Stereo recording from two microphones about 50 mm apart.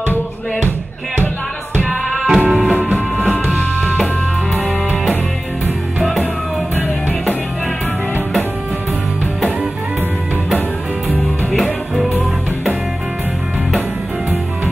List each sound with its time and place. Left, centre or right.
2.2 s music: centre
11.5 s music: centre